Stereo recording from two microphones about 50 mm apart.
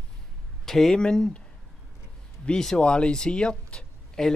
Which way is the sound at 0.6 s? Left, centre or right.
Centre.